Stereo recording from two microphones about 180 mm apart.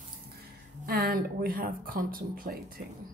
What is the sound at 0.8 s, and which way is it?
Speech, 55° right (ahead or behind).